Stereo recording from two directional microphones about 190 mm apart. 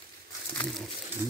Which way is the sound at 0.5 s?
5° left (ahead or behind).